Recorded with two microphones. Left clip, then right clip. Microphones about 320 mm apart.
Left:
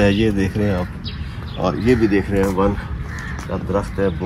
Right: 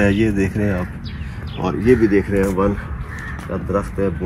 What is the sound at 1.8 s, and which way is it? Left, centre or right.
Speech, left.